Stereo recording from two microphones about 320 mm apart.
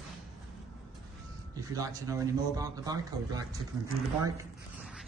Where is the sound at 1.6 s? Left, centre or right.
Centre.